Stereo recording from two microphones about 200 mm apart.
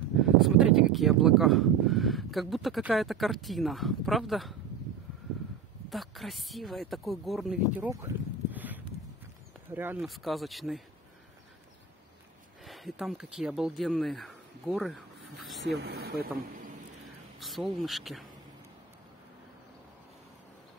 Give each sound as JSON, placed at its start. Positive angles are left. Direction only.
{"t": 0.4, "sound": "speech", "side_deg": 0}
{"t": 5.9, "sound": "speech", "side_deg": 0}
{"t": 10.0, "sound": "speech", "side_deg": 0}
{"t": 12.6, "sound": "speech", "side_deg": 0}
{"t": 15.8, "sound": "speech", "side_deg": -55}
{"t": 17.4, "sound": "speech", "side_deg": 0}